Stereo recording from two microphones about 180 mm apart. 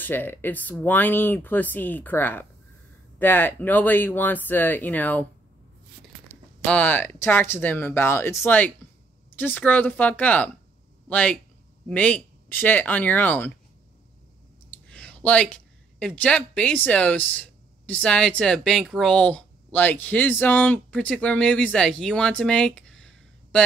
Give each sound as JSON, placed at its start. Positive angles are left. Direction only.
{"t": 0.0, "sound": "speech", "side_deg": 10}
{"t": 6.6, "sound": "speech", "side_deg": 10}
{"t": 14.9, "sound": "speech", "side_deg": 5}